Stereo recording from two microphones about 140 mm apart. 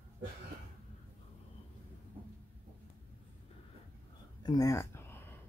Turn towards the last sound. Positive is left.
turn(degrees=15)  # may be behind; listen again after turning